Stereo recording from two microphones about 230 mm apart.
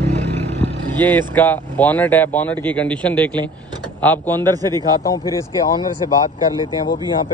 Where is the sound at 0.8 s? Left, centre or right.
Centre.